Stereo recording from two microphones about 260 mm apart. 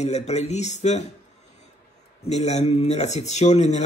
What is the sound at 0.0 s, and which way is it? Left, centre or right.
Speech, left.